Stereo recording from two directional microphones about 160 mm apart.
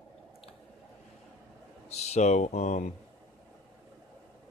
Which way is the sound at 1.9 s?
45° left (ahead or behind).